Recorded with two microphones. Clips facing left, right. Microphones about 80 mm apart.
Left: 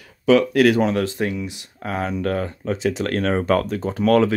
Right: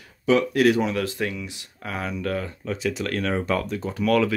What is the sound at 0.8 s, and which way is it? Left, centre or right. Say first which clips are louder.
Speech: left 4 dB; left.